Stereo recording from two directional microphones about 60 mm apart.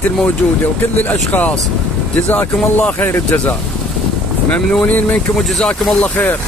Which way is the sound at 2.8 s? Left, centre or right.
Left.